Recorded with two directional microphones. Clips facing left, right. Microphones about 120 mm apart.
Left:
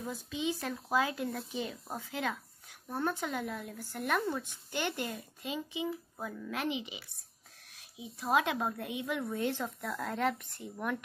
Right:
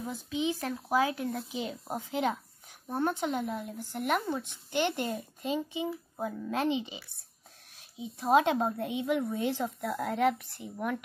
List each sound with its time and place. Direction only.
0.0 s speech: 15° right (ahead or behind)
1.6 s speech: 20° right (ahead or behind)
8.0 s speech: 25° right (ahead or behind); by 11.0 s 5° right (ahead or behind)